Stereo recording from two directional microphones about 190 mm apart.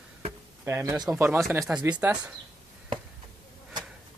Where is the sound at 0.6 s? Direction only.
15° right (ahead or behind).